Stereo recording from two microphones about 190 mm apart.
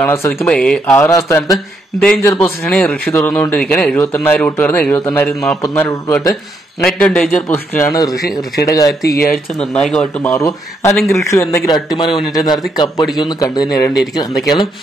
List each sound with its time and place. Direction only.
0.0 s a man's voice: 10° left (ahead or behind)
2.0 s a man's voice: 5° left (ahead or behind)
9.3 s a man's voice: 5° left (ahead or behind); by 14.7 s 20° left (ahead or behind)